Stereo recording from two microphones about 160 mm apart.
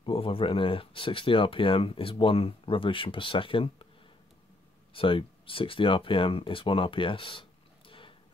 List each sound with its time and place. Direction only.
0.0 s speech: 35° left (ahead or behind)
4.9 s speech: 35° left (ahead or behind)